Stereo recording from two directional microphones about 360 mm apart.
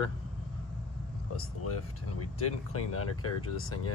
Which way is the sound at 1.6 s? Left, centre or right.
Left.